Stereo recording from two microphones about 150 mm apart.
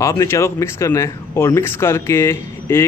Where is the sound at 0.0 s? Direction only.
20° left (ahead or behind).